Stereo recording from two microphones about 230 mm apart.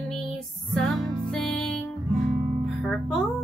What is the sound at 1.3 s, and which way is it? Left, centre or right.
Music, centre.